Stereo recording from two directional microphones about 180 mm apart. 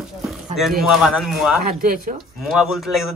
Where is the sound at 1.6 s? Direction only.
50° right (ahead or behind).